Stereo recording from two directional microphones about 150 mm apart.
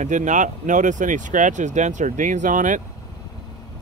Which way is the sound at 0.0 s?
55° right (ahead or behind).